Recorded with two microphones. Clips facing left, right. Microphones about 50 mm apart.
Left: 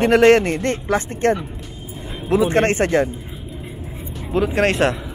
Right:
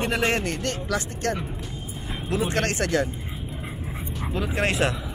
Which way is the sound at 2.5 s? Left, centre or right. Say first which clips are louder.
Left 8 dB; left.